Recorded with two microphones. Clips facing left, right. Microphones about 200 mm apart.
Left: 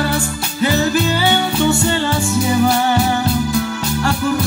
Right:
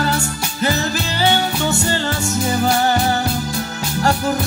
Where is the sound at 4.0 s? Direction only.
40° right (ahead or behind).